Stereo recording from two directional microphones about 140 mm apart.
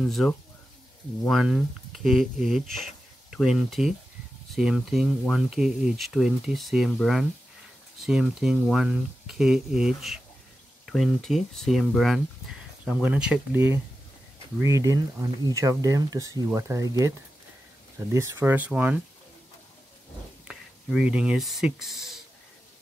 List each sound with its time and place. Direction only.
0.0 s speech: centre (ahead or behind)
3.3 s speech: 5° right (ahead or behind)
20.4 s speech: 5° right (ahead or behind)